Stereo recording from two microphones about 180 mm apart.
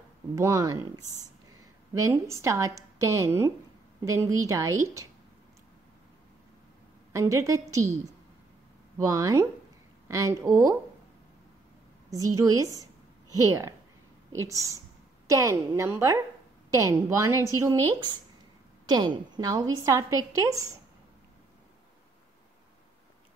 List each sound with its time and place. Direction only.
0.4 s speech: 15° right (ahead or behind)
7.1 s a woman's voice: 15° right (ahead or behind)
12.1 s a woman's voice: 20° right (ahead or behind)
18.9 s a woman's voice: 25° right (ahead or behind)